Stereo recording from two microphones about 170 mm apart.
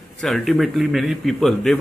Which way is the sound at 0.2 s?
Centre (ahead or behind).